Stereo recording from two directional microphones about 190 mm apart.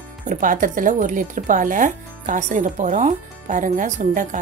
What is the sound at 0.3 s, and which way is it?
A woman's voice, 45° right (ahead or behind).